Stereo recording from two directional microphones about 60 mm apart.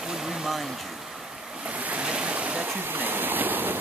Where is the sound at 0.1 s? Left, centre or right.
Centre.